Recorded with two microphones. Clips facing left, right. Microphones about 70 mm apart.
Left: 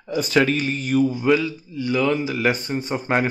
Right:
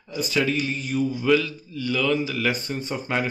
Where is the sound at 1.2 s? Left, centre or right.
Centre.